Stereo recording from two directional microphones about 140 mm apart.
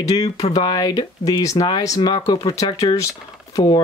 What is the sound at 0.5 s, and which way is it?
Speech, 30° left (ahead or behind).